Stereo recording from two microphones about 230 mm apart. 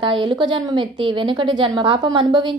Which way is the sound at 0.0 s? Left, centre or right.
Right.